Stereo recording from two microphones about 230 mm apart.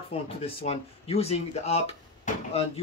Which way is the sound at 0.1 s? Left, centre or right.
Left.